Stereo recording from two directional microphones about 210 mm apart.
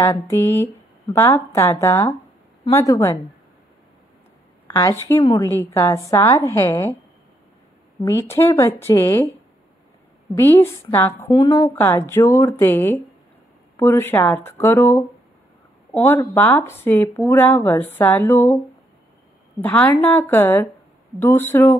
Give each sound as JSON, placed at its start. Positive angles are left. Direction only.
{"t": 0.0, "sound": "a woman's voice", "side_deg": 10}
{"t": 4.6, "sound": "a woman's voice", "side_deg": 10}
{"t": 8.0, "sound": "a woman's voice", "side_deg": 10}
{"t": 10.3, "sound": "a woman's voice", "side_deg": 10}
{"t": 11.2, "sound": "a woman's voice", "side_deg": 20}
{"t": 11.6, "sound": "a woman's voice", "side_deg": 10}
{"t": 19.6, "sound": "a woman's voice", "side_deg": 10}